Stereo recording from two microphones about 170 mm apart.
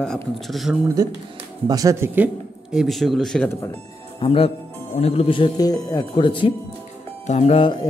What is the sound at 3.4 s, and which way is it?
Speech, 15° left (ahead or behind).